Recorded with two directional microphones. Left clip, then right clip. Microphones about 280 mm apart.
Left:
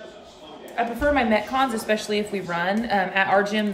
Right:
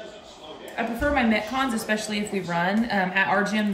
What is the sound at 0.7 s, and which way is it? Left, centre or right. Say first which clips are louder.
Speech: left 3 dB; centre.